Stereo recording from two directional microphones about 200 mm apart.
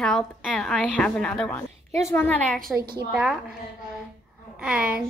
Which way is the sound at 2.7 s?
50° right (ahead or behind).